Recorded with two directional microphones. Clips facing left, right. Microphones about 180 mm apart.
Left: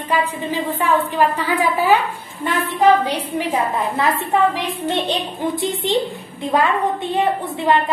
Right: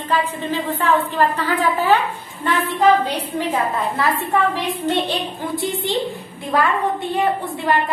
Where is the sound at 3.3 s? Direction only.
20° left (ahead or behind).